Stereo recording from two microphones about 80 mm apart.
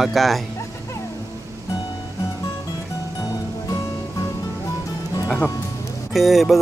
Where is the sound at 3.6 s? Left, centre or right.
Left.